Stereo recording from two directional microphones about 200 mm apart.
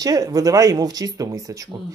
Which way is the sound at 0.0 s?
15° right (ahead or behind).